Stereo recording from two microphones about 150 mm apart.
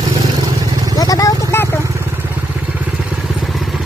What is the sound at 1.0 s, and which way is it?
Vehicle, 25° left (ahead or behind).